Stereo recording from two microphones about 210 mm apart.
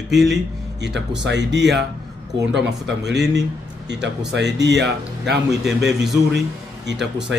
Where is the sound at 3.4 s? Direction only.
55° right (ahead or behind).